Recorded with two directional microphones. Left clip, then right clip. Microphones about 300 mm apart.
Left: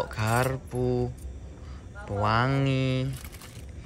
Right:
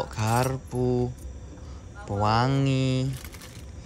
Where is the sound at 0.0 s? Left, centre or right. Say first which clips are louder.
Right 1 dB; centre.